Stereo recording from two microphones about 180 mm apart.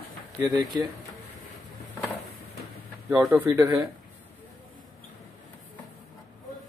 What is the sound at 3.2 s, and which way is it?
Speech, 10° right (ahead or behind).